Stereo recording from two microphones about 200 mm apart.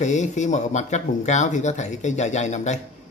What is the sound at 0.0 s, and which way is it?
A man's voice, 35° left (ahead or behind).